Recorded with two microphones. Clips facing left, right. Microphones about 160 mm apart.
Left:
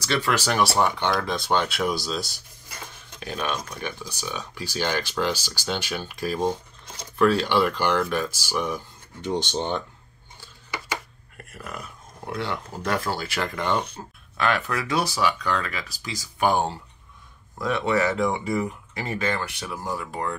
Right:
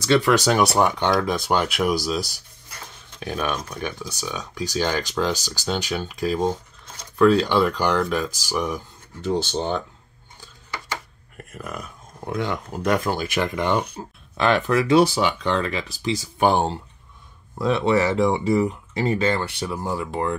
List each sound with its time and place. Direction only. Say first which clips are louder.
0.0 s speech: right 7 dB; 20° right (ahead or behind)
3.3 s speech: right 3 dB; 10° right (ahead or behind)
7.0 s speech: right 4 dB; 10° left (ahead or behind)
7.4 s speech: right 2 dB; 15° right (ahead or behind)
9.2 s speech: right 3 dB; 5° right (ahead or behind)
11.5 s speech: right 3 dB; 20° right (ahead or behind)
14.3 s speech: right 6 dB; 25° right (ahead or behind)